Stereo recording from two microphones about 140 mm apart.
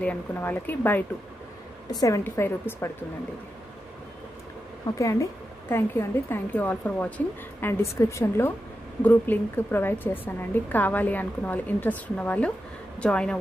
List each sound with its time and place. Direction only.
0.0 s speech: 15° left (ahead or behind)
1.9 s a woman's voice: 25° left (ahead or behind)
4.9 s speech: 20° left (ahead or behind); by 13.4 s 5° left (ahead or behind)